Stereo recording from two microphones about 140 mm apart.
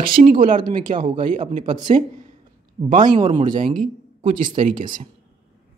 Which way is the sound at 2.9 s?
35° right (ahead or behind).